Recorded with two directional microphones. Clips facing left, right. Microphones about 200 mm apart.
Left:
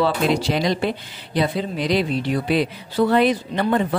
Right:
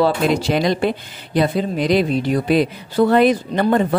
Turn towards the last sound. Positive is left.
turn(degrees=-45)  # may be behind; listen again after turning